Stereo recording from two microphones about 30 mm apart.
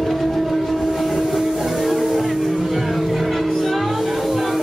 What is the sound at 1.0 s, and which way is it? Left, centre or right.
Train, centre.